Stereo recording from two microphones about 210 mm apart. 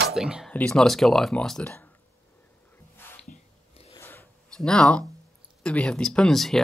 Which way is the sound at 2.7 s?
10° left (ahead or behind).